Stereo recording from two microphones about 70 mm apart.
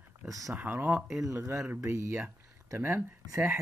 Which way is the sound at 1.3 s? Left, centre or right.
Right.